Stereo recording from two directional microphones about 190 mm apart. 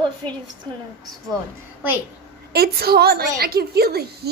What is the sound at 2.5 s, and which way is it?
A woman's voice, 55° right (ahead or behind).